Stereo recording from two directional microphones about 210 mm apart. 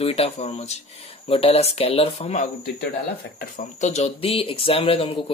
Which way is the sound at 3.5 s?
35° left (ahead or behind).